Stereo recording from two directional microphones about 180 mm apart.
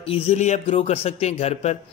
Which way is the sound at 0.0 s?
30° left (ahead or behind).